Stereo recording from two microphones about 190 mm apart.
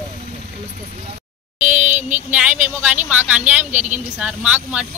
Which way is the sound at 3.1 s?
10° right (ahead or behind).